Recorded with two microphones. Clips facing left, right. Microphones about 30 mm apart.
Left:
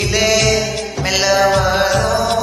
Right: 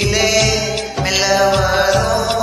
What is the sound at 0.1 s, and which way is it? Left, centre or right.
Music, centre.